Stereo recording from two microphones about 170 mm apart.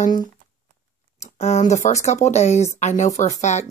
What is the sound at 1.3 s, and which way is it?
Speech, 40° left (ahead or behind).